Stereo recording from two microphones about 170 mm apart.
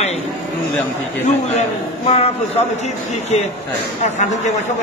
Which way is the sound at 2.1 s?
40° left (ahead or behind).